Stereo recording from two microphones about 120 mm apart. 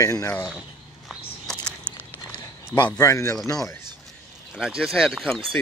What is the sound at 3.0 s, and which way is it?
Speech, 25° left (ahead or behind).